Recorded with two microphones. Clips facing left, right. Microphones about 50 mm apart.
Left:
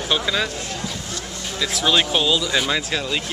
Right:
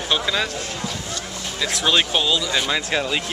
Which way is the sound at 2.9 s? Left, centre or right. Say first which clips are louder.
Right 2 dB; centre.